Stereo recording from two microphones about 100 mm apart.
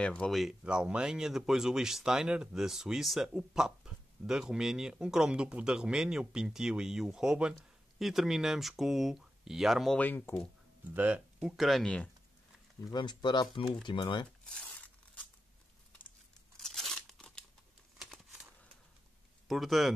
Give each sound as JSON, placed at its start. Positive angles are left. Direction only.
{"t": 0.0, "sound": "speech", "side_deg": 10}
{"t": 9.9, "sound": "speech", "side_deg": 20}
{"t": 10.9, "sound": "speech", "side_deg": -15}
{"t": 11.4, "sound": "speech", "side_deg": 0}
{"t": 12.9, "sound": "speech", "side_deg": 45}
{"t": 14.4, "sound": "tearing", "side_deg": 5}
{"t": 16.5, "sound": "crunch", "side_deg": 5}
{"t": 17.9, "sound": "crumpling", "side_deg": 0}
{"t": 19.4, "sound": "speech", "side_deg": 0}